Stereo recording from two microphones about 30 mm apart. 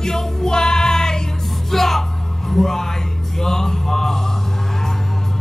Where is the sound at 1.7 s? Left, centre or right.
Centre.